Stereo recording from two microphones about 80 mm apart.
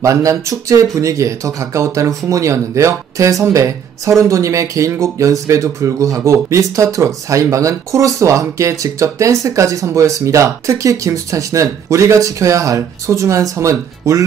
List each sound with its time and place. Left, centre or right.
0.0 s speech: right